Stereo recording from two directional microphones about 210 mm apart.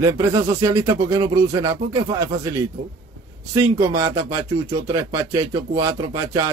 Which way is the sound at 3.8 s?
15° right (ahead or behind).